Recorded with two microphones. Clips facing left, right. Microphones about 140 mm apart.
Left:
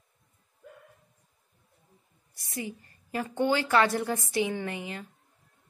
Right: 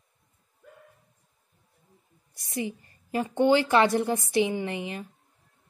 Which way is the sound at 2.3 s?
20° right (ahead or behind).